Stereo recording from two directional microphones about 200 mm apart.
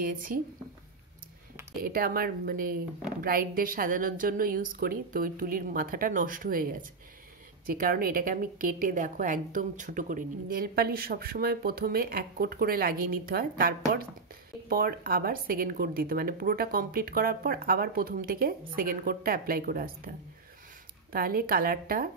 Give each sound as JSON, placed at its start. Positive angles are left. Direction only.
{"t": 0.0, "sound": "a woman's voice", "side_deg": -45}
{"t": 1.8, "sound": "a woman's voice", "side_deg": -50}
{"t": 21.1, "sound": "a woman's voice", "side_deg": -45}